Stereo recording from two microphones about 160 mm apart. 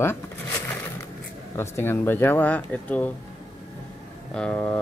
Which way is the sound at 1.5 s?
15° left (ahead or behind).